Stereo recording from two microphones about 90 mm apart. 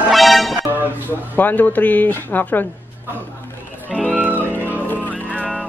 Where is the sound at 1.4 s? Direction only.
20° left (ahead or behind).